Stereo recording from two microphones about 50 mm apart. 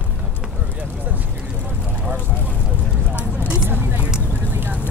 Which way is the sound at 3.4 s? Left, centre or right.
Right.